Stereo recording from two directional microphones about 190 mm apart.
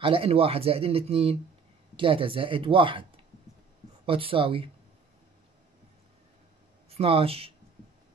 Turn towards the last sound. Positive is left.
turn(degrees=-30)  # may be behind; listen again after turning